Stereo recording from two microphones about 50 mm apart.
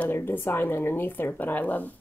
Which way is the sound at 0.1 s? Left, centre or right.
Left.